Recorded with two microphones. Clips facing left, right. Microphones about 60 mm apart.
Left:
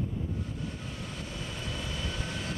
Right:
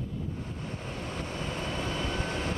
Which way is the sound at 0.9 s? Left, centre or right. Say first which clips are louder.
Right 4 dB; right.